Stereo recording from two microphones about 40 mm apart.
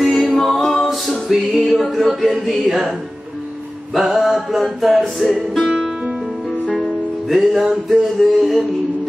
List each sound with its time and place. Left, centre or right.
0.0 s music: centre
3.9 s music: centre
5.7 s music: centre
6.7 s music: centre